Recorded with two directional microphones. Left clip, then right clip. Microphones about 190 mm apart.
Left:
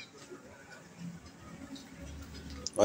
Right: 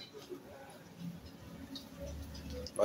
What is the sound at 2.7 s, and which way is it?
Music, 40° left (ahead or behind).